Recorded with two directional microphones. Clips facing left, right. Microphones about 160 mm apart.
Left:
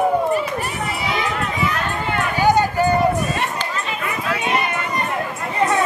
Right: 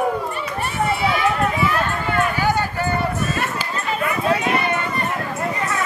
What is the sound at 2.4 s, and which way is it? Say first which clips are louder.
Run: left 5 dB; 15° left (ahead or behind).